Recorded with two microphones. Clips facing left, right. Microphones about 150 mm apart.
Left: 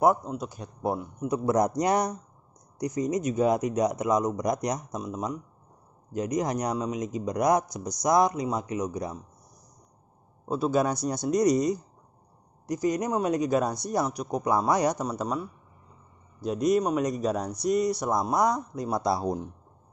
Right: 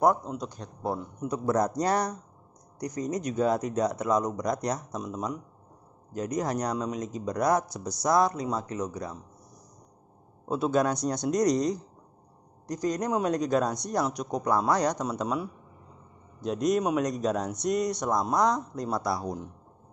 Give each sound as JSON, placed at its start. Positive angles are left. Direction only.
{"t": 0.0, "sound": "speech", "side_deg": 5}
{"t": 10.5, "sound": "speech", "side_deg": 5}
{"t": 15.0, "sound": "speech", "side_deg": -5}
{"t": 18.9, "sound": "speech", "side_deg": 20}